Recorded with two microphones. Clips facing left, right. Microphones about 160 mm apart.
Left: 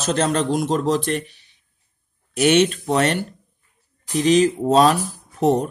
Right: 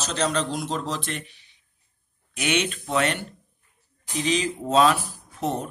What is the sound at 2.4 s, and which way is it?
Speech, 40° left (ahead or behind).